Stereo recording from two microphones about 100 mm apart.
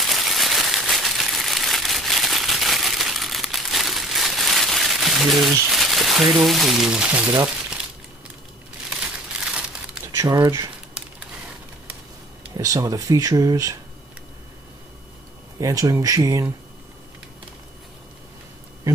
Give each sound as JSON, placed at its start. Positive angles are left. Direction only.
{"t": 0.0, "sound": "crumpling", "side_deg": 0}
{"t": 5.7, "sound": "speech", "side_deg": 0}
{"t": 8.9, "sound": "crumpling", "side_deg": -10}
{"t": 10.1, "sound": "speech", "side_deg": -40}
{"t": 12.5, "sound": "speech", "side_deg": -35}
{"t": 15.6, "sound": "speech", "side_deg": -35}